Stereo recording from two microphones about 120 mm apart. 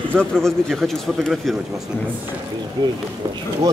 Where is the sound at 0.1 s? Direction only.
5° left (ahead or behind).